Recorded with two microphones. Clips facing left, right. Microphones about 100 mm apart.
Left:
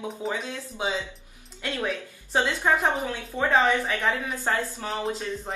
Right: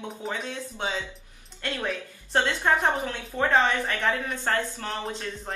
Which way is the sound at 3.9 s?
15° left (ahead or behind).